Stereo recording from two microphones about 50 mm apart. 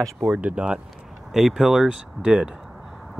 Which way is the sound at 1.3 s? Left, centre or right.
Centre.